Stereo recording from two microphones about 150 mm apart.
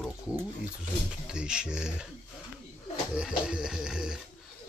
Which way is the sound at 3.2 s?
5° right (ahead or behind).